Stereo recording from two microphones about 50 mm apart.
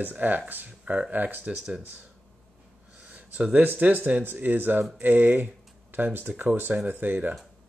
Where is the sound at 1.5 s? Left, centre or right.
Centre.